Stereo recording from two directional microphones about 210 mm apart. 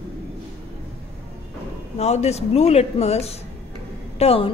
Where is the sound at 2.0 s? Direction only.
30° left (ahead or behind).